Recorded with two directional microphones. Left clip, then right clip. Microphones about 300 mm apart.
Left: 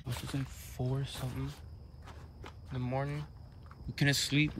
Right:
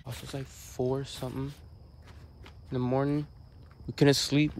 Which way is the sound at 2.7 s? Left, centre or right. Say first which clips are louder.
Right 8 dB; centre.